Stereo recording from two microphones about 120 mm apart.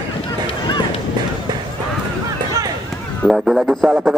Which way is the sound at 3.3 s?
Centre (ahead or behind).